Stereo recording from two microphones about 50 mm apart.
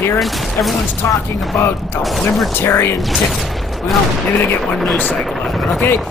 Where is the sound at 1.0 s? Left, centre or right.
Left.